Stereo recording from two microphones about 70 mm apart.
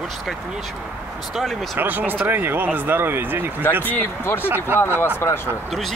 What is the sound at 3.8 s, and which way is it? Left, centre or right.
Speech, left.